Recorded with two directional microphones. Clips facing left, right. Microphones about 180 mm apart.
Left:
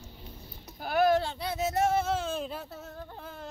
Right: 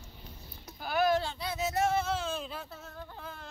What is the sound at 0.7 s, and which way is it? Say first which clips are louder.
Speech: left 3 dB; 50° left (ahead or behind).